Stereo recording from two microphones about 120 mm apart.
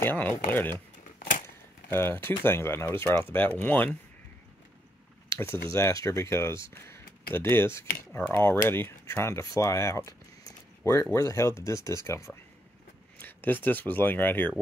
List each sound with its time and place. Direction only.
0.0 s speech: 15° left (ahead or behind)
1.9 s speech: 20° left (ahead or behind)
5.3 s speech: 25° left (ahead or behind)